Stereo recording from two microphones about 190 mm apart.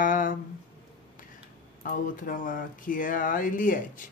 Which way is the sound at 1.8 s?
45° left (ahead or behind).